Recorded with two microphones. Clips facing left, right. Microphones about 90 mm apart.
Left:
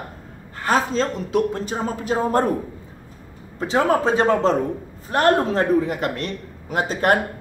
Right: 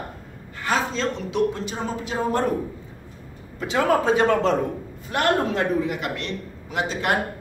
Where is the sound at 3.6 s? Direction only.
30° left (ahead or behind).